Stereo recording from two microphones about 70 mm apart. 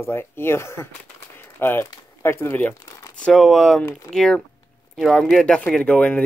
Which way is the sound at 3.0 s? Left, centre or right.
Left.